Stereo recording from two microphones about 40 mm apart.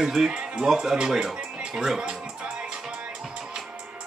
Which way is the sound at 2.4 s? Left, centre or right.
Right.